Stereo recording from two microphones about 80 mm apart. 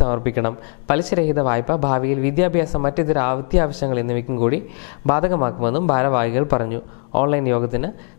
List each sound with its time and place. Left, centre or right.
0.0 s speech: centre